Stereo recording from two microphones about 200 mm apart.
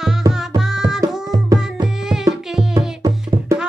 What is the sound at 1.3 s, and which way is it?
Music, 20° right (ahead or behind).